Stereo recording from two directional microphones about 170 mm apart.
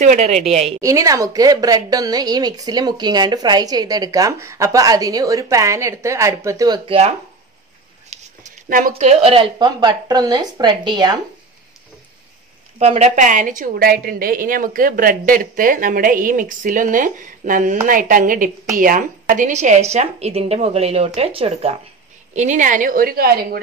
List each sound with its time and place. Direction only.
0.0 s a woman's voice: 45° right (ahead or behind)
0.7 s a woman's voice: 20° right (ahead or behind)
6.9 s a woman's voice: 40° right (ahead or behind)
8.1 s a sound: 40° right (ahead or behind)
8.6 s a woman's voice: 55° right (ahead or behind)
8.9 s a woman's voice: 40° right (ahead or behind)
12.7 s a woman's voice: 40° right (ahead or behind); by 23.6 s 65° right (ahead or behind)